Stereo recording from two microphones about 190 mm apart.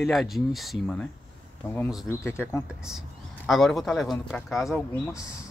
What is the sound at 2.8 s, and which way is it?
Speech, 5° right (ahead or behind).